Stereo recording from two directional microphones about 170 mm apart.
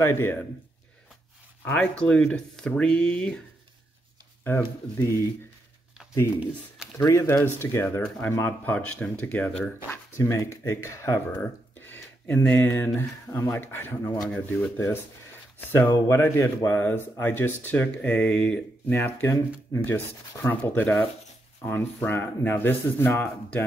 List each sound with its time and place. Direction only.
0.0 s speech: 15° left (ahead or behind)
1.6 s speech: 10° left (ahead or behind)
4.5 s speech: 10° left (ahead or behind)